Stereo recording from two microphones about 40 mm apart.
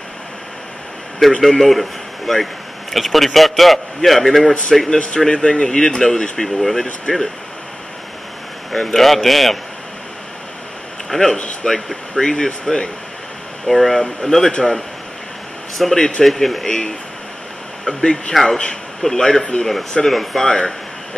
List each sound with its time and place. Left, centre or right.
1.4 s a man's voice: centre
4.8 s speech: centre
8.7 s a man's voice: centre
11.1 s a man's voice: centre
13.7 s a man's voice: centre
15.8 s a man's voice: centre
17.8 s speech: centre
18.3 s a man's voice: centre